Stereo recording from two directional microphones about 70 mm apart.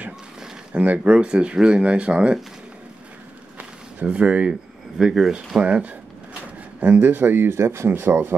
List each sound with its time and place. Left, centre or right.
0.7 s speech: right
3.5 s a sound: right
4.9 s speech: centre
5.6 s speech: centre; by 8.4 s right